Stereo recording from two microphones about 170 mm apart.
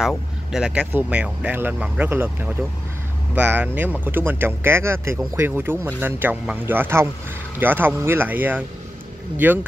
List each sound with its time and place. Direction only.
0.0 s speech: centre (ahead or behind)